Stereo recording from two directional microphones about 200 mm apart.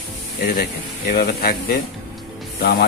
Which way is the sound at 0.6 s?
50° left (ahead or behind).